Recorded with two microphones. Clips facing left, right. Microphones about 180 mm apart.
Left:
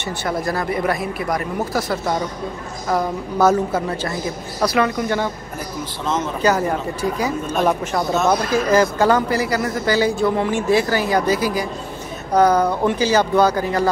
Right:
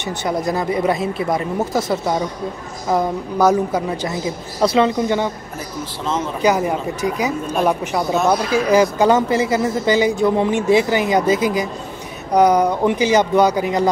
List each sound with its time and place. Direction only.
0.0 s speech: 20° right (ahead or behind)